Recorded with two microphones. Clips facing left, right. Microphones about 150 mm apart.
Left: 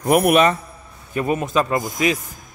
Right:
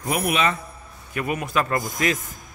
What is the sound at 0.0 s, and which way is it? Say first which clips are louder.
Speech: left 8 dB; 55° left (ahead or behind).